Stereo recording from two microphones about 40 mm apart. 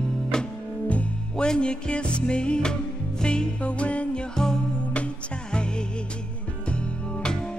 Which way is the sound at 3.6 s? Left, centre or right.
Left.